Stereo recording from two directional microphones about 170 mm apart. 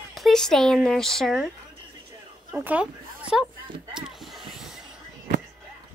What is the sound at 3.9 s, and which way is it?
Vehicle, 5° right (ahead or behind).